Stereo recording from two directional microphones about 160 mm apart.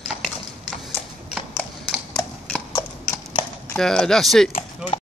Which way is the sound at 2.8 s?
20° left (ahead or behind).